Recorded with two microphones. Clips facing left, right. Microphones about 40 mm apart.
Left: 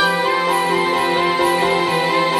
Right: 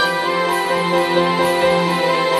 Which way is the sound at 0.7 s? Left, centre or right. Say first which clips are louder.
Even; centre.